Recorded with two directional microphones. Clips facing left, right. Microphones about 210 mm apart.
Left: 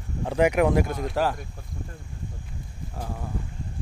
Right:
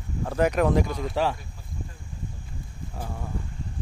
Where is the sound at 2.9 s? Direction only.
Centre (ahead or behind).